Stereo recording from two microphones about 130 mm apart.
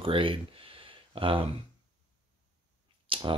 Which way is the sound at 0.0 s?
40° right (ahead or behind).